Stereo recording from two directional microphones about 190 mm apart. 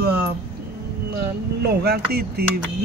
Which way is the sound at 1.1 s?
55° right (ahead or behind).